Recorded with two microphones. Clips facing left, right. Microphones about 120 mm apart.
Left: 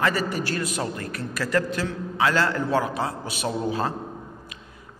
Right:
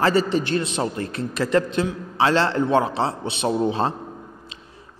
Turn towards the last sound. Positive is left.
turn(degrees=-25)  # may be behind; listen again after turning